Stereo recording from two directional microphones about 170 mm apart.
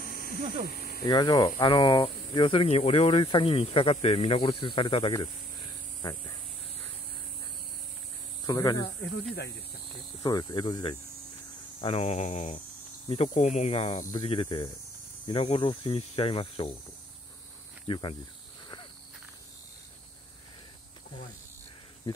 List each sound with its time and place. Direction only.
0.0 s a sound: 55° left (ahead or behind)
1.0 s speech: 20° left (ahead or behind)
8.5 s speech: 20° left (ahead or behind)
10.2 s speech: 25° left (ahead or behind)
17.8 s cricket: 30° left (ahead or behind)